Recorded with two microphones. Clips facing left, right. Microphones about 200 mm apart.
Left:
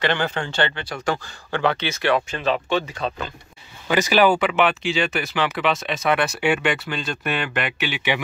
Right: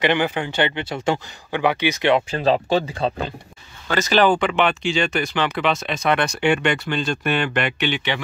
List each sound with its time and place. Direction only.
0.0 s speech: 15° right (ahead or behind)
2.3 s speech: 35° right (ahead or behind)
3.8 s speech: 15° left (ahead or behind)